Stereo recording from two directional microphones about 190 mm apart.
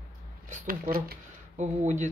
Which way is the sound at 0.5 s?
50° right (ahead or behind).